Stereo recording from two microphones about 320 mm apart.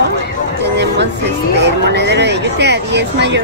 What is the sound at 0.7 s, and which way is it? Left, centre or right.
Speech, right.